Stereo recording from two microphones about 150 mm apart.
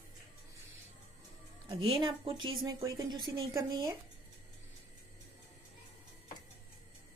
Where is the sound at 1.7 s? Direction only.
35° right (ahead or behind).